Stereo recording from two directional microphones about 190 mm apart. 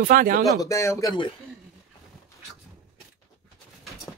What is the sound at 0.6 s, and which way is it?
Speech, 15° left (ahead or behind).